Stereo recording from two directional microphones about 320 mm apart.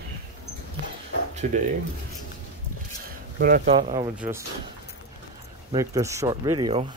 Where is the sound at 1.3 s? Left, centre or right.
Right.